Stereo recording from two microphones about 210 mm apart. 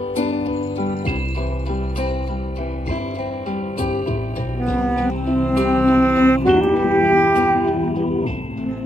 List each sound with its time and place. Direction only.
0.1 s music: 30° left (ahead or behind)
4.7 s music: 5° left (ahead or behind)